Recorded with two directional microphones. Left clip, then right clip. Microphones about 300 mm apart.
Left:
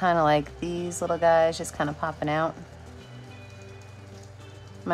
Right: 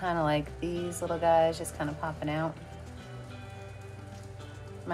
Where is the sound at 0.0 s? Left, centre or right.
Centre.